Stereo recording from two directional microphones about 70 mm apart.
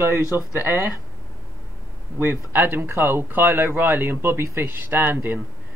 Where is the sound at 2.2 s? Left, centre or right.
Right.